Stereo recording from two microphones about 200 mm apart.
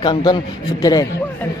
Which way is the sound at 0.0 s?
20° left (ahead or behind).